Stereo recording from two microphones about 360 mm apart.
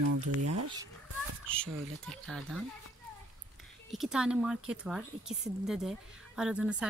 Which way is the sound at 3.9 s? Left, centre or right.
Centre.